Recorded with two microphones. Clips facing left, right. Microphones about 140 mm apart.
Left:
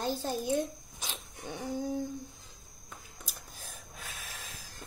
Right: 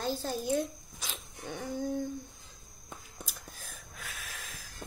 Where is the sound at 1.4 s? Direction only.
10° left (ahead or behind).